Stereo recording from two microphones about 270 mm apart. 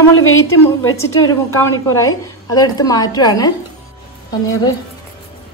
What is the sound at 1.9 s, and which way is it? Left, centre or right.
A woman's voice, centre.